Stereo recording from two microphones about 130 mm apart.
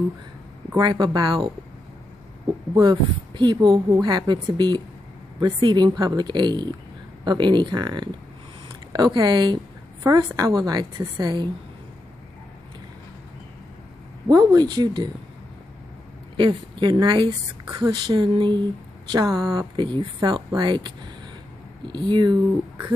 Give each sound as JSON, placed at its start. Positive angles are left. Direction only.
{"t": 0.7, "sound": "speech", "side_deg": -30}
{"t": 2.7, "sound": "speech", "side_deg": -30}
{"t": 14.2, "sound": "speech", "side_deg": -30}
{"t": 16.3, "sound": "speech", "side_deg": -35}